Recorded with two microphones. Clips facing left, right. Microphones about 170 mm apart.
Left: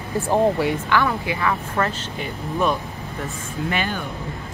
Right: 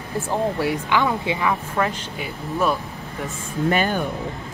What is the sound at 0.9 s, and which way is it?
A woman's voice, 20° right (ahead or behind).